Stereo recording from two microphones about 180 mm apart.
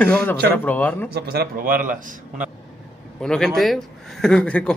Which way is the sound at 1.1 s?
60° right (ahead or behind).